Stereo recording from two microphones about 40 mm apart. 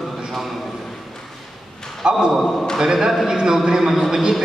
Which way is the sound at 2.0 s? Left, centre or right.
Right.